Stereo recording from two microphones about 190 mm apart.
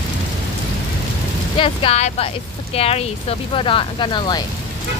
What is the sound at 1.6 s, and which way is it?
Speech, 30° left (ahead or behind).